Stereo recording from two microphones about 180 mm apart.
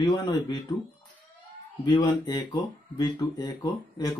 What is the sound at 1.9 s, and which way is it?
Speech, 20° left (ahead or behind).